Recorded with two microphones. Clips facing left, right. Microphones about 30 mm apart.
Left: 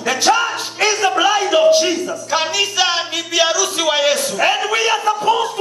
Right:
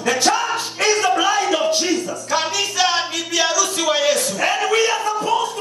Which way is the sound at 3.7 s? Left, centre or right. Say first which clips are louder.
Left 2 dB; centre.